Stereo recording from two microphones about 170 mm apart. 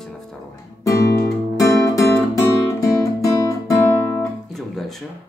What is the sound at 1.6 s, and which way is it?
Music, 15° left (ahead or behind).